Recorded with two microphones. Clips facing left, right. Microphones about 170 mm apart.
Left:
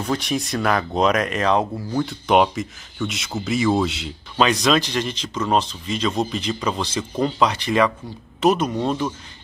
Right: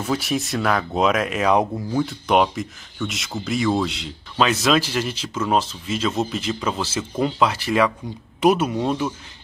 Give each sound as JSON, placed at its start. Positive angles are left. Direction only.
{"t": 0.0, "sound": "speech", "side_deg": -5}
{"t": 2.0, "sound": "speech", "side_deg": 0}